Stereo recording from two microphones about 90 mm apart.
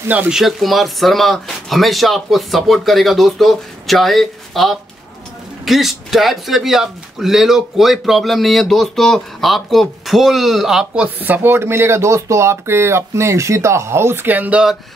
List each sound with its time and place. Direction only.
0.3 s speech: 5° right (ahead or behind)
11.1 s speech: 20° right (ahead or behind)